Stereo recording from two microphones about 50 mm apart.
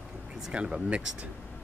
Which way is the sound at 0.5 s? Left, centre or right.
Right.